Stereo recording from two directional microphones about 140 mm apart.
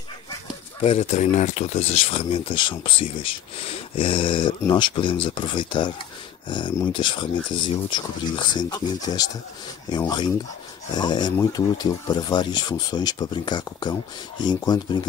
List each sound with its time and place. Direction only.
0.7 s speech: 50° left (ahead or behind); by 14.8 s 30° left (ahead or behind)